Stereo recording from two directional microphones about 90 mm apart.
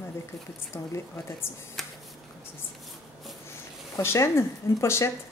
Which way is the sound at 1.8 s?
5° left (ahead or behind).